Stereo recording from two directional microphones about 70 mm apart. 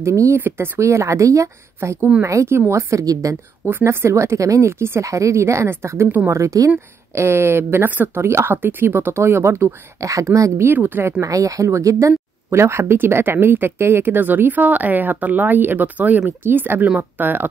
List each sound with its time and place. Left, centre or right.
0.0 s a woman's voice: right
0.4 s speech: right
0.7 s a woman's voice: right
2.0 s speech: centre
2.2 s a woman's voice: right
3.6 s a woman's voice: right
7.2 s speech: right
9.9 s a woman's voice: right
10.6 s speech: right
11.1 s a woman's voice: right
12.4 s speech: right